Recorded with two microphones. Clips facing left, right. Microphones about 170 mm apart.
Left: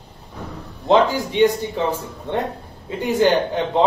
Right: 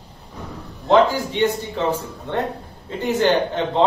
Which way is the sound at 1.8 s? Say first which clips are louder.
Right 1 dB; 15° left (ahead or behind).